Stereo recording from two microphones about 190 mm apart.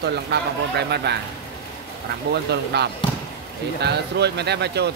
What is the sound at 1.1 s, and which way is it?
Speech, 65° right (ahead or behind).